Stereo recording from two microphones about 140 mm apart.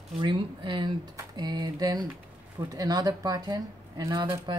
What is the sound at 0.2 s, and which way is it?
Speech, 35° right (ahead or behind).